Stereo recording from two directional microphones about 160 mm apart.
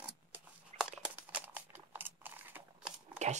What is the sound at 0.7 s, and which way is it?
Crumpling, 5° right (ahead or behind).